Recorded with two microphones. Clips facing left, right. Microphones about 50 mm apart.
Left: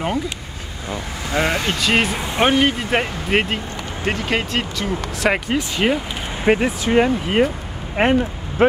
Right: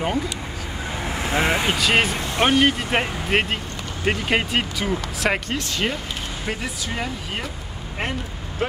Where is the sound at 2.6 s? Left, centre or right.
Centre.